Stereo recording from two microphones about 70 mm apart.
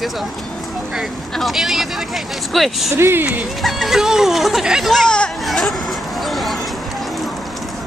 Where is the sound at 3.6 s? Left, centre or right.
Centre.